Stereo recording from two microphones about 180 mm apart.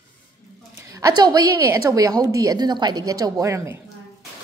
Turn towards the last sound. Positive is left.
turn(degrees=-15)  # may be behind; listen again after turning